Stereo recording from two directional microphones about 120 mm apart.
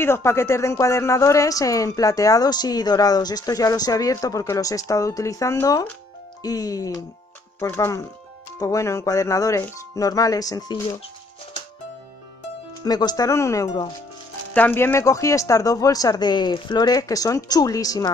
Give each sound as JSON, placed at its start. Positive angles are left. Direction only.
{"t": 0.0, "sound": "a woman's voice", "side_deg": 20}
{"t": 12.8, "sound": "speech", "side_deg": 35}
{"t": 14.5, "sound": "a woman's voice", "side_deg": 15}